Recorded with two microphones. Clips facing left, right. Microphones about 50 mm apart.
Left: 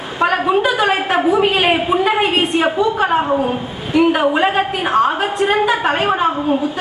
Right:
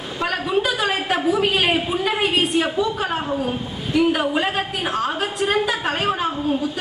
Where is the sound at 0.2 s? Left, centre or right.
Left.